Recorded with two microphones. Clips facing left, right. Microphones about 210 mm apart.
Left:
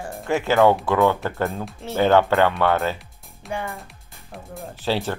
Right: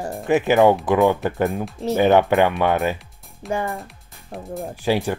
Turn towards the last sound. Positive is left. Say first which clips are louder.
# right 3 dB
turn(degrees=-15)  # may be behind; listen again after turning